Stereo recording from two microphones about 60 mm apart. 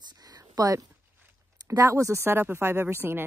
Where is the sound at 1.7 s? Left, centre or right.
Right.